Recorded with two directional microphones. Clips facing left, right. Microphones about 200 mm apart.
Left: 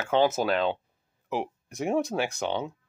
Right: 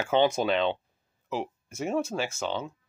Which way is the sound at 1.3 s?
15° left (ahead or behind).